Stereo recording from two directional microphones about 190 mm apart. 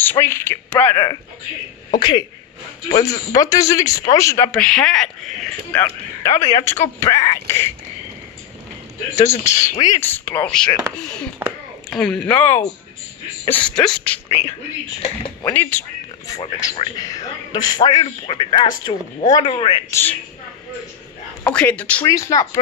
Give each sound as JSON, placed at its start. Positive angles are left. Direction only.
{"t": 0.0, "sound": "speech", "side_deg": 10}
{"t": 2.0, "sound": "speech", "side_deg": 25}
{"t": 2.9, "sound": "a man's voice", "side_deg": 35}
{"t": 3.3, "sound": "speech", "side_deg": 15}
{"t": 4.5, "sound": "speech", "side_deg": 5}
{"t": 5.7, "sound": "speech", "side_deg": 15}
{"t": 9.3, "sound": "speech", "side_deg": 15}
{"t": 13.7, "sound": "speech", "side_deg": 5}
{"t": 15.0, "sound": "a man's voice", "side_deg": 30}
{"t": 15.5, "sound": "speech", "side_deg": 10}
{"t": 16.5, "sound": "a man's voice", "side_deg": 25}
{"t": 19.9, "sound": "speech", "side_deg": 10}
{"t": 21.5, "sound": "speech", "side_deg": 5}